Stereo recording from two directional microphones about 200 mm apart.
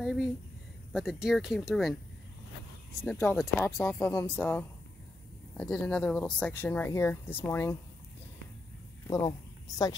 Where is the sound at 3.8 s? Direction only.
10° left (ahead or behind).